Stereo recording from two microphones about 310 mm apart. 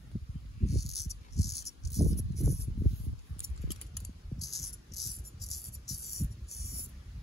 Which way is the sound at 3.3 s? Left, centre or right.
Centre.